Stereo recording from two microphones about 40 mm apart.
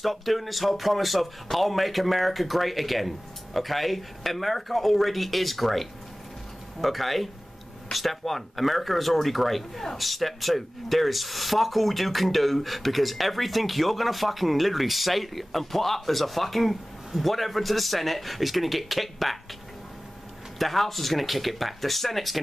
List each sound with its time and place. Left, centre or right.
0.0 s speech: centre
20.5 s speech: centre